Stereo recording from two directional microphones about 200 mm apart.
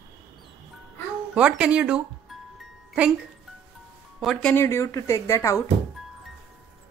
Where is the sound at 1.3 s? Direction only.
5° right (ahead or behind).